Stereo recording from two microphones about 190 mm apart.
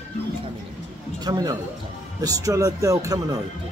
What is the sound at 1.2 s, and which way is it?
Speech, 20° right (ahead or behind).